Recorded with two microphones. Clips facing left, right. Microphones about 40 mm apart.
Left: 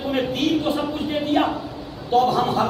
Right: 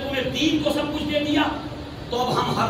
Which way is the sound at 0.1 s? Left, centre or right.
Right.